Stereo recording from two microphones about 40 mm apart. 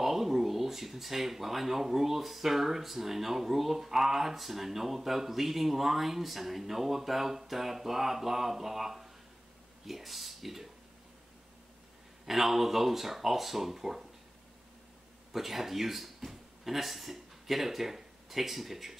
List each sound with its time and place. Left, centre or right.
0.0 s speech: centre
12.3 s speech: centre
15.3 s speech: centre